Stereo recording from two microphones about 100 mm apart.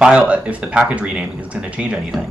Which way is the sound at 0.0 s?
10° right (ahead or behind).